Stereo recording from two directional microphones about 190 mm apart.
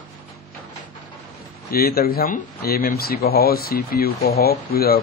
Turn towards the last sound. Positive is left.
turn(degrees=55)  # may be behind; listen again after turning